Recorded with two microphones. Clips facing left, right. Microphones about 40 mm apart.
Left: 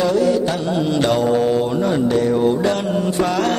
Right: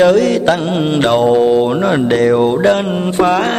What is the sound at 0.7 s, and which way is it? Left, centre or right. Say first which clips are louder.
Mantra: right 4 dB; right.